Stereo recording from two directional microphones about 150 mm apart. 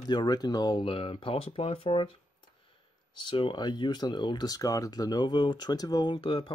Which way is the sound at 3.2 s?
30° left (ahead or behind).